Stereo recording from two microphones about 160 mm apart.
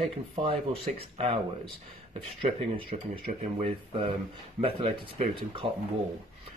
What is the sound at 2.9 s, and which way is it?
Speech, 40° right (ahead or behind).